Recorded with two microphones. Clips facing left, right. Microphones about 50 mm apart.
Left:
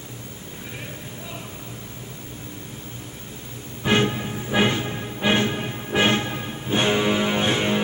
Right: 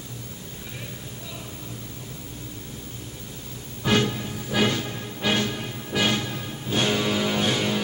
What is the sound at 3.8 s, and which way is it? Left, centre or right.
Music, left.